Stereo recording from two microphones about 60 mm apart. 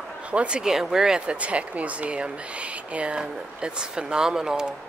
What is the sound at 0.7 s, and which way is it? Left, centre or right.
Speech, centre.